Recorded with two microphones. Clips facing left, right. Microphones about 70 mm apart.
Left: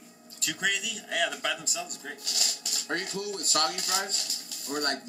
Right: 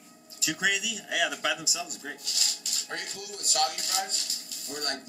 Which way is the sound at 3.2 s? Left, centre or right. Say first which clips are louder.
Right 4 dB; left.